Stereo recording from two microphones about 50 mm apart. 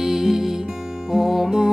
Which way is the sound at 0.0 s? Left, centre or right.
Centre.